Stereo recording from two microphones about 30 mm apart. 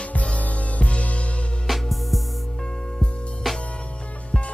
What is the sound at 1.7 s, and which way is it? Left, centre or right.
Music, centre.